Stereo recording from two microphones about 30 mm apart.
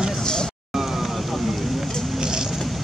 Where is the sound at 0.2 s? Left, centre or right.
Left.